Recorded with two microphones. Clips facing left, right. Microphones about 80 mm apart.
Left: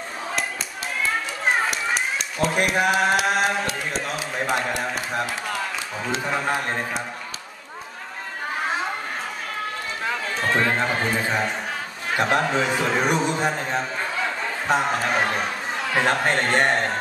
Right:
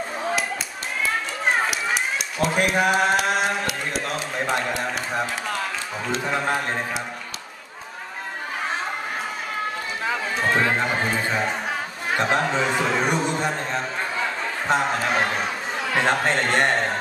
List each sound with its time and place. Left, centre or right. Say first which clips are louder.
1.4 s a man's voice: even; centre
10.0 s a man's voice: right 1 dB; centre